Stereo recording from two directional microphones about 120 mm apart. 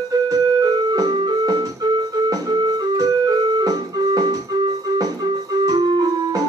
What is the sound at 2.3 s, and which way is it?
Keyboard, 35° right (ahead or behind).